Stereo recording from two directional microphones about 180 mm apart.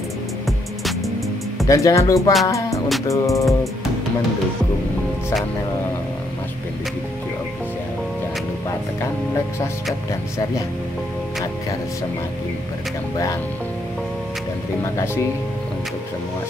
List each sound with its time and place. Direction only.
1.7 s speech: 15° left (ahead or behind)
2.4 s music: 15° left (ahead or behind)
3.1 s speech: 15° left (ahead or behind)